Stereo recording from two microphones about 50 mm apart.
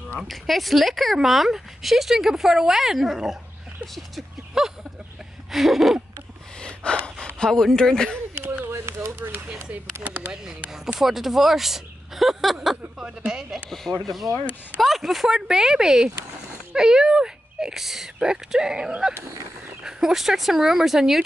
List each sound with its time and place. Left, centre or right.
0.3 s speech: centre
4.6 s speech: centre
6.6 s gasp: centre
7.3 s speech: centre
8.4 s a sound: right
8.7 s a sound: right
10.0 s a sound: right
10.3 s speech: centre
13.0 s speech: centre
14.0 s speech: centre